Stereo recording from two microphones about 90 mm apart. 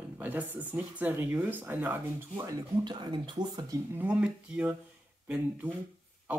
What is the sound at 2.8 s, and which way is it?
Speech, 55° right (ahead or behind).